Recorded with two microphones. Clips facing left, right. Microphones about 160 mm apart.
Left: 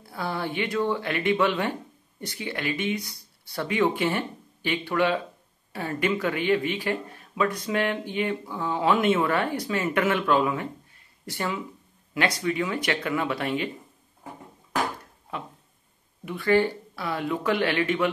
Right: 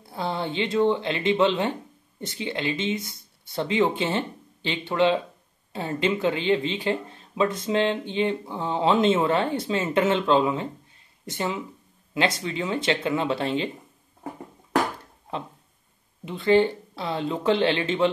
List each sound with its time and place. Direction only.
0.0 s speech: 25° right (ahead or behind)
16.3 s speech: 20° right (ahead or behind)